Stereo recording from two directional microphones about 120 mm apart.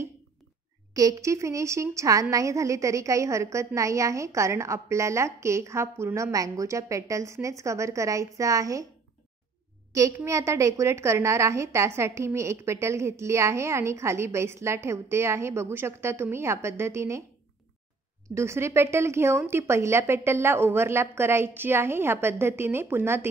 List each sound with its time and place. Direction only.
0.9 s a woman's voice: 25° right (ahead or behind)
9.9 s a woman's voice: 25° right (ahead or behind)
18.3 s a woman's voice: 20° right (ahead or behind)